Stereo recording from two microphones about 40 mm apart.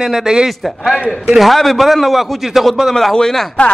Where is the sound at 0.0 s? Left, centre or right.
Centre.